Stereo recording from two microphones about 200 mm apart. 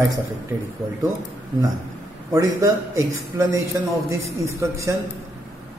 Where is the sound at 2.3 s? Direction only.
15° right (ahead or behind).